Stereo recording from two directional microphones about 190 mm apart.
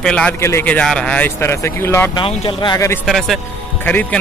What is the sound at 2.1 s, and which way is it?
Speech, 30° left (ahead or behind).